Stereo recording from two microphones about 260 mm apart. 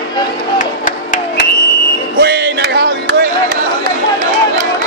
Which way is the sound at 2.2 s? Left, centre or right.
Right.